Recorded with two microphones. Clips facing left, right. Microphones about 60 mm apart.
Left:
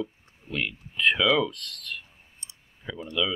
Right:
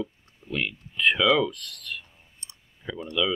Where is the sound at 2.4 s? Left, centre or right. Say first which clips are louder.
Right 2 dB; right.